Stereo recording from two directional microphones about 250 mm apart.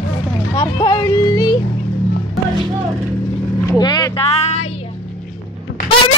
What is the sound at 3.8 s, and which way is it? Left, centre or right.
Speech, centre.